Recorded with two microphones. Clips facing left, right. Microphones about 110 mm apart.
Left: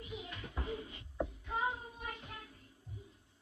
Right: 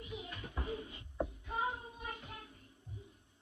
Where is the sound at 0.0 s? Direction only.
20° right (ahead or behind).